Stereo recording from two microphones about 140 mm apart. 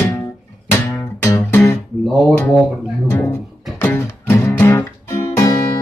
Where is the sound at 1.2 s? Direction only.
15° left (ahead or behind).